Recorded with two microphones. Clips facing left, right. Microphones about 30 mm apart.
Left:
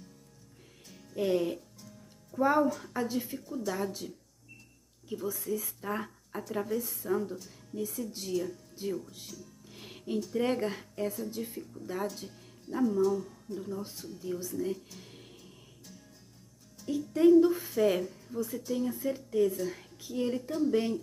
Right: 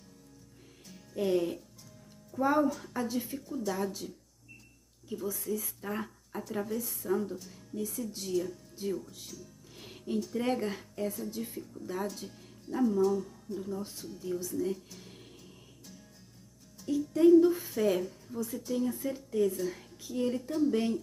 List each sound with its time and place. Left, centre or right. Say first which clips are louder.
0.8 s music: left 1 dB; centre
2.3 s speech: left 1 dB; centre
5.6 s speech: left 1 dB; centre
9.3 s music: even; centre
9.8 s music: even; centre
10.2 s speech: left 3 dB; centre
14.3 s speech: right 1 dB; centre
16.9 s speech: even; centre
17.5 s speech: left 1 dB; centre
20.0 s speech: even; centre